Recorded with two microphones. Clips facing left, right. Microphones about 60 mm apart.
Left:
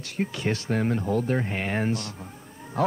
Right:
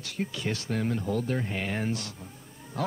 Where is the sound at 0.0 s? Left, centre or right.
Left.